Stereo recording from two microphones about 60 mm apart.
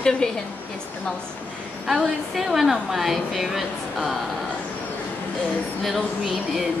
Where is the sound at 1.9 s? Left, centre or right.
Centre.